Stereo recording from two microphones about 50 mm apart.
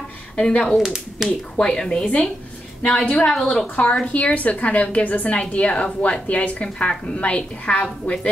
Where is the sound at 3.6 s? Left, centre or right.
Left.